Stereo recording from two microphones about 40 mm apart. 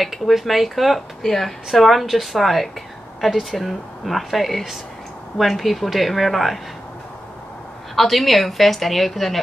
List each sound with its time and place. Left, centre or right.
0.0 s speech: centre
7.9 s speech: centre